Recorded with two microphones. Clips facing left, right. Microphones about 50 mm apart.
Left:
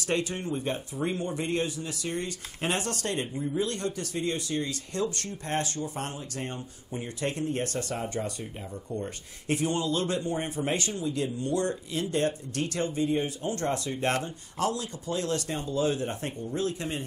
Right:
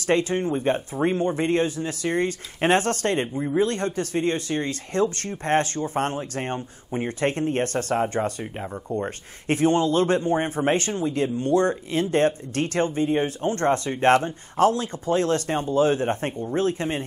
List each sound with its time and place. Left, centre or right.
0.0 s speech: right